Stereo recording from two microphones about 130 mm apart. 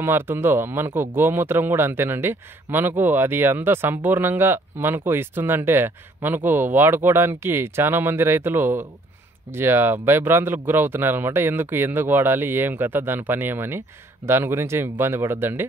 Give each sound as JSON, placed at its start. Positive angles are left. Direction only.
{"t": 0.0, "sound": "speech", "side_deg": -15}